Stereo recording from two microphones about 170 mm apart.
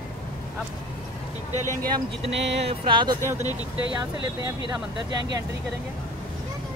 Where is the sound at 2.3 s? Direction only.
90° right.